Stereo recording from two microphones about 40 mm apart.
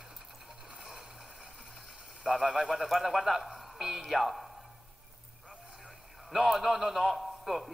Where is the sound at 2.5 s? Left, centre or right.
Centre.